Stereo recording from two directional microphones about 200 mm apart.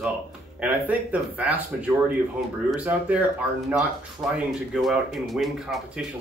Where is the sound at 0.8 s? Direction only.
5° right (ahead or behind).